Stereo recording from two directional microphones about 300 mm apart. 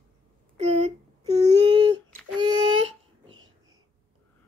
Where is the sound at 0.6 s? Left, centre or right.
Right.